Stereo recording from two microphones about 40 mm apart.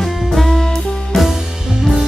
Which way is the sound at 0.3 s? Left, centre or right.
Centre.